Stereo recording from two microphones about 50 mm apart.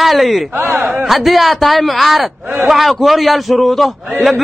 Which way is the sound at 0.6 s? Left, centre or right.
Right.